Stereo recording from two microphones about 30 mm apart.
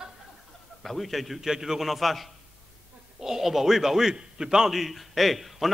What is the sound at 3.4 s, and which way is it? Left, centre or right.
Speech, centre.